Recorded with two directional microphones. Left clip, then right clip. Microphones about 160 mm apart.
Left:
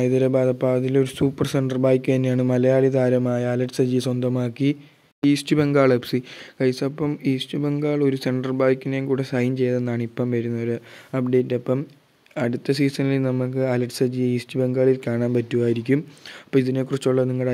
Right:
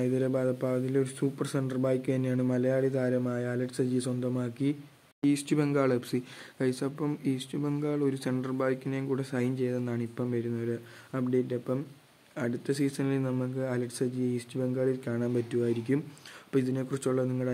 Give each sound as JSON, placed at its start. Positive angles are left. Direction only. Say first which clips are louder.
{"t": 0.0, "sound": "speech", "louder": "left 10 dB", "side_deg": 40}